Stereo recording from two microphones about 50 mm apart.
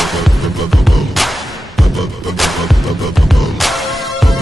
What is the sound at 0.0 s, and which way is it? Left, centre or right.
Music, centre.